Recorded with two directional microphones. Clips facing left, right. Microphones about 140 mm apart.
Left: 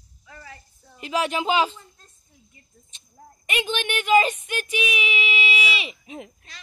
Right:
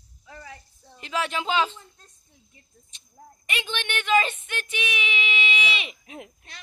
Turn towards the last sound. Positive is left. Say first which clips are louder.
# left 3 dB
turn(degrees=0)  # may be behind; listen again after turning